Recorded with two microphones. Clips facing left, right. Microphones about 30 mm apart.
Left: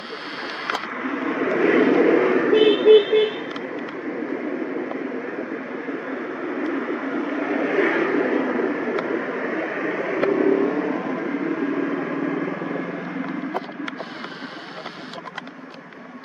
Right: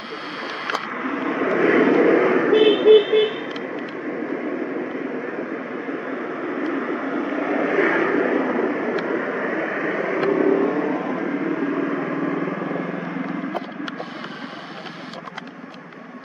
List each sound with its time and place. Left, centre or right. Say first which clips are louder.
0.4 s rowboat: right 1 dB; centre
0.9 s vehicle: right 1 dB; centre
6.0 s vehicle: right 1 dB; centre